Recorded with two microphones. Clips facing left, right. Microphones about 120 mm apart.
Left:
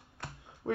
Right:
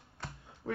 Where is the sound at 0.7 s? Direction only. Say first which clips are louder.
Left 4 dB; 30° left (ahead or behind).